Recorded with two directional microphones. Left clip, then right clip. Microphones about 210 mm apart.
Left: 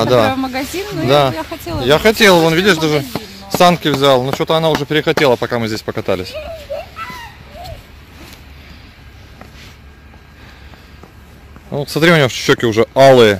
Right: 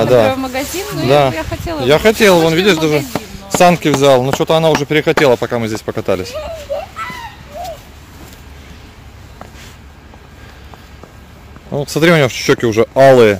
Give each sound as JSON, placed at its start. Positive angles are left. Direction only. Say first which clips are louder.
{"t": 0.2, "sound": "speech", "louder": "right 2 dB", "side_deg": 50}
{"t": 1.0, "sound": "speech", "louder": "right 1 dB", "side_deg": 5}
{"t": 1.3, "sound": "speech", "louder": "right 2 dB", "side_deg": 55}
{"t": 1.9, "sound": "speech", "louder": "even", "side_deg": 0}
{"t": 3.5, "sound": "speech", "louder": "right 1 dB", "side_deg": -5}
{"t": 11.7, "sound": "speech", "louder": "even", "side_deg": 0}